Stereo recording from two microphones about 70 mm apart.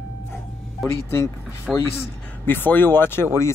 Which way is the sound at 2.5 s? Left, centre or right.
Left.